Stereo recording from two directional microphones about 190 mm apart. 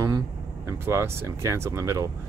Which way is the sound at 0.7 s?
15° right (ahead or behind).